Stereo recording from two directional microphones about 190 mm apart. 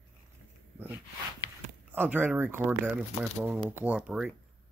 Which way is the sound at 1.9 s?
10° right (ahead or behind).